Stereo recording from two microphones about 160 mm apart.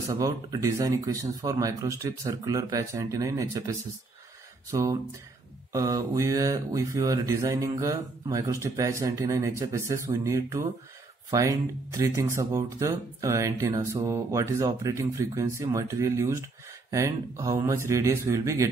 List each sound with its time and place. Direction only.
0.1 s speech: 20° right (ahead or behind)